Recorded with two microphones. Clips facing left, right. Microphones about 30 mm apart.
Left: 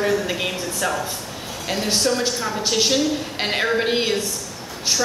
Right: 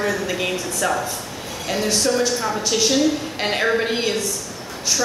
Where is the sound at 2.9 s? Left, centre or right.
Centre.